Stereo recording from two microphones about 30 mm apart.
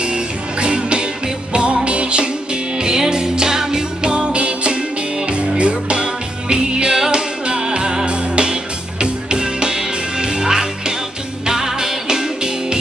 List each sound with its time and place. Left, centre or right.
0.0 s music: right
2.8 s music: right
4.0 s music: right
6.5 s music: right